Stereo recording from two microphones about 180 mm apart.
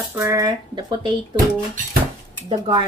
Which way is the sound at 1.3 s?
50° right (ahead or behind).